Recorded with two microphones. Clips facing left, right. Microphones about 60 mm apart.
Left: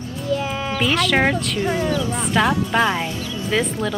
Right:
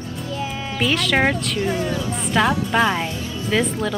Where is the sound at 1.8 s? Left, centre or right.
Left.